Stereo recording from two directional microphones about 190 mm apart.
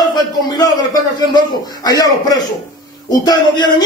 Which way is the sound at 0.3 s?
20° left (ahead or behind).